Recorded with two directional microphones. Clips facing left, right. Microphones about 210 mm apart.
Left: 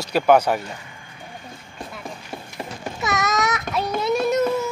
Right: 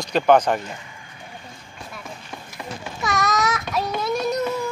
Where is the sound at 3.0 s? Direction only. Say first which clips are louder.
Even; 20° left (ahead or behind).